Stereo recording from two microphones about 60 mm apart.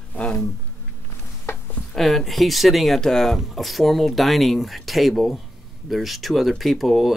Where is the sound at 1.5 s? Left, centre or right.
Left.